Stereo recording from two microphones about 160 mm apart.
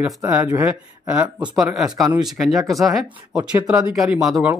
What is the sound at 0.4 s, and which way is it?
Speech, 20° right (ahead or behind).